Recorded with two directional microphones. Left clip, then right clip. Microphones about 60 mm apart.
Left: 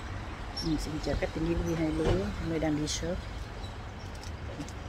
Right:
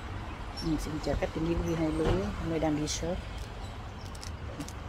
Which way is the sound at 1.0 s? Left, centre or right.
Centre.